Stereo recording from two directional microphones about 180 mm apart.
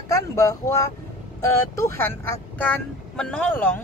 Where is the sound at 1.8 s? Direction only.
15° left (ahead or behind).